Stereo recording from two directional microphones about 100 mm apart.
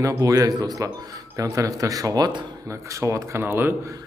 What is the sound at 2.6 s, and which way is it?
Speech, 30° right (ahead or behind).